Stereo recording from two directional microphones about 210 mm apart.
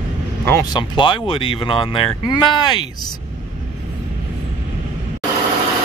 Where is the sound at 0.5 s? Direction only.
20° left (ahead or behind).